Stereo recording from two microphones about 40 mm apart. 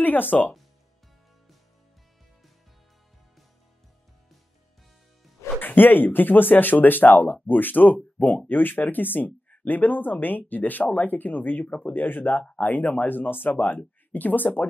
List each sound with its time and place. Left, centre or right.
0.0 s speech: left
5.6 s speech: left
11.6 s speech: left
11.9 s speech: left